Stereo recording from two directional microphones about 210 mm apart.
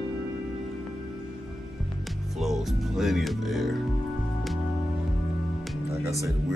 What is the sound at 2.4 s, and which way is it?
Music, centre (ahead or behind).